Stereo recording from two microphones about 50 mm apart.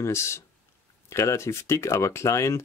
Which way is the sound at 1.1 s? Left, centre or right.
Left.